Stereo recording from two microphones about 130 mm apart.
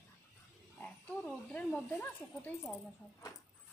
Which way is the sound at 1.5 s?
10° left (ahead or behind).